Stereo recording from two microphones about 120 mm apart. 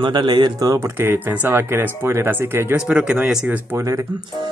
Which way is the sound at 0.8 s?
20° right (ahead or behind).